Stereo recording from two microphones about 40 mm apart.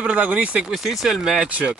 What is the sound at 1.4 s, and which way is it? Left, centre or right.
Speech, right.